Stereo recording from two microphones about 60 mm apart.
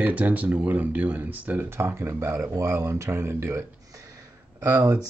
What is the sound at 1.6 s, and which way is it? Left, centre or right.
Speech, right.